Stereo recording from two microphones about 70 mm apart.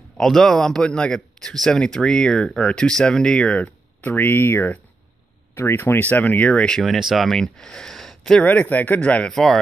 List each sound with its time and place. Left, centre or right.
0.2 s a man's voice: centre
6.8 s speech: centre
8.4 s speech: left
9.3 s speech: centre